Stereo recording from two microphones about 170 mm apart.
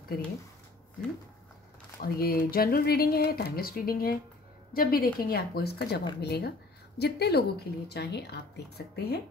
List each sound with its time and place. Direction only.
2.0 s a woman's voice: 60° left (ahead or behind)